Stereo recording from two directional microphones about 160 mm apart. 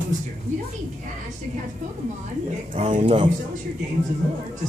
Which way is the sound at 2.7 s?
50° right (ahead or behind).